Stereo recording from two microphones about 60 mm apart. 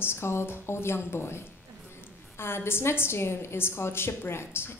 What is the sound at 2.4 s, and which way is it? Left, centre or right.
A woman's voice, left.